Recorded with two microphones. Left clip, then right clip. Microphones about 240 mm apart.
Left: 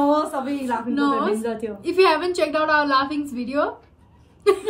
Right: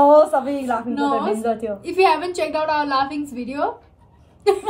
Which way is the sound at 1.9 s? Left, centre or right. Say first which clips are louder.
Even; centre.